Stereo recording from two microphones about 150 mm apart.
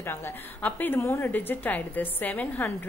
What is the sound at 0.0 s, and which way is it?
A woman's voice, 15° left (ahead or behind).